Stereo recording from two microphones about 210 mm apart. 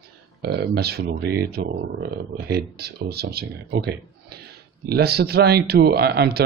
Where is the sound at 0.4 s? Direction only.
50° right (ahead or behind).